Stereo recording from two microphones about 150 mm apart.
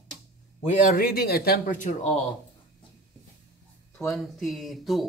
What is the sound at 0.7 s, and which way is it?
A man's voice, 65° left (ahead or behind).